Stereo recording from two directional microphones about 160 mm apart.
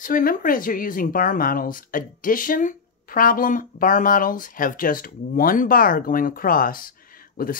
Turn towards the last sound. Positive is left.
turn(degrees=65)  # may be behind; listen again after turning